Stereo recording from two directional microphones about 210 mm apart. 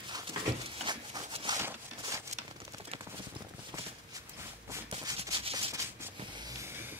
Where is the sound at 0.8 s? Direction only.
20° right (ahead or behind).